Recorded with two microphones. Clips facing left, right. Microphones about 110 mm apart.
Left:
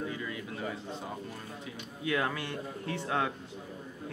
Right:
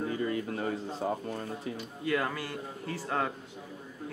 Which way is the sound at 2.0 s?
Centre (ahead or behind).